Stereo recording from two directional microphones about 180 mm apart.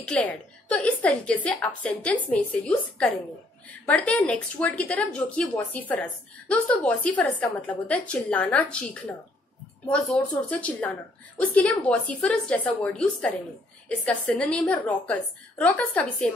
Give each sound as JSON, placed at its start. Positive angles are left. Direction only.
{"t": 0.0, "sound": "a woman's voice", "side_deg": 5}